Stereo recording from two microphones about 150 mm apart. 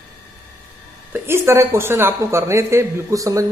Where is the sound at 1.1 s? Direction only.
15° right (ahead or behind).